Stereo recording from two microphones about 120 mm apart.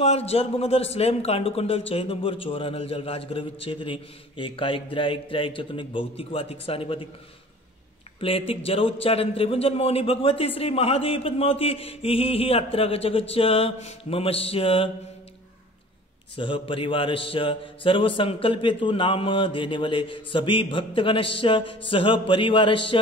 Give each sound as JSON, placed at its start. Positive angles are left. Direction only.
{"t": 0.0, "sound": "a man's voice", "side_deg": 60}
{"t": 8.2, "sound": "a man's voice", "side_deg": 50}
{"t": 16.3, "sound": "a man's voice", "side_deg": 45}